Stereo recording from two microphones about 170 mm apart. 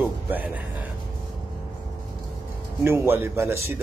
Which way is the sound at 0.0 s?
10° right (ahead or behind).